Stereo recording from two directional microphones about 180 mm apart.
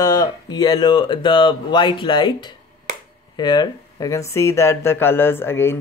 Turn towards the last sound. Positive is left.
turn(degrees=15)  # may be behind; listen again after turning